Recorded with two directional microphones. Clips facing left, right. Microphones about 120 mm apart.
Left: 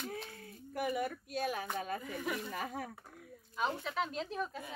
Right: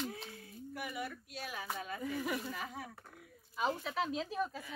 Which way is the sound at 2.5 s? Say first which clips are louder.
Left 3 dB; 45° left (ahead or behind).